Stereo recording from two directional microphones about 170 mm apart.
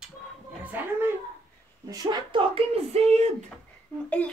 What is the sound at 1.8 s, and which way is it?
Speech, 25° right (ahead or behind).